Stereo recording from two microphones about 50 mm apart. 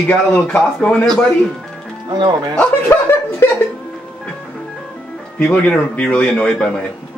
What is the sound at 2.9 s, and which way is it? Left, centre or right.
Speech, left.